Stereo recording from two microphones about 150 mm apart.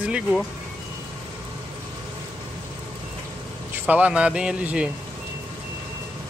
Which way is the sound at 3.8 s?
10° right (ahead or behind).